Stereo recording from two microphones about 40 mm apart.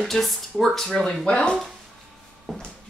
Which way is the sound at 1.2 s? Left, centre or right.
Left.